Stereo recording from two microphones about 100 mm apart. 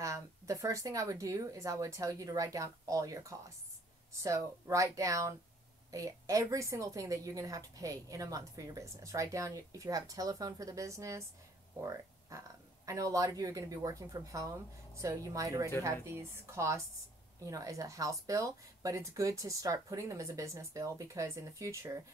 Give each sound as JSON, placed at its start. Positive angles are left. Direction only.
{"t": 0.0, "sound": "a woman's voice", "side_deg": -35}